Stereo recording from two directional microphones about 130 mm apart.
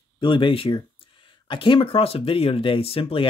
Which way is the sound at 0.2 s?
40° left (ahead or behind).